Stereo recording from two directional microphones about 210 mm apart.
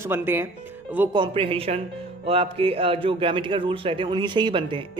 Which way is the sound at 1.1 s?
25° right (ahead or behind).